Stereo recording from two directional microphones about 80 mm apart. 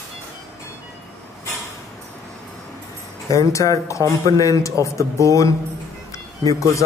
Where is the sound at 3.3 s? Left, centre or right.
Left.